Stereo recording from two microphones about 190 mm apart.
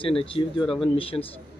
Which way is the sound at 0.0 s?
30° left (ahead or behind).